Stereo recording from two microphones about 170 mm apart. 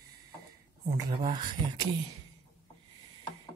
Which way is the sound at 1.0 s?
25° right (ahead or behind).